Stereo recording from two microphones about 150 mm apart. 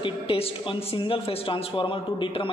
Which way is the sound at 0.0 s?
35° left (ahead or behind).